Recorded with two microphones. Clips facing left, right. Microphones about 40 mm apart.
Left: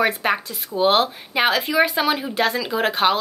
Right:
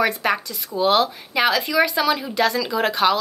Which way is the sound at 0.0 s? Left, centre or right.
Left.